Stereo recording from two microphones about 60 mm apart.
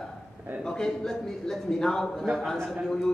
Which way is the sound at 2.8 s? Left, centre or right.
Centre.